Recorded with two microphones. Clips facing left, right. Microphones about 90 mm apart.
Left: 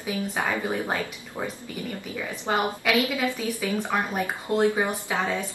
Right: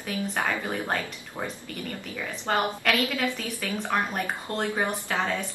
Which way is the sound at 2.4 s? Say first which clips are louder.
Left 1 dB; 15° left (ahead or behind).